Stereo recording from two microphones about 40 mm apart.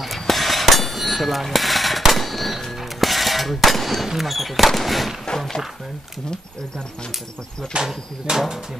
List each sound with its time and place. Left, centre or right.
0.0 s a sound: centre
4.1 s speech: centre
7.7 s speech: centre